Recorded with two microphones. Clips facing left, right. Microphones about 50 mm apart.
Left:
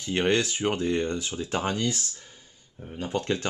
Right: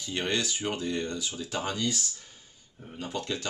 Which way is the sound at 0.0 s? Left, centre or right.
Left.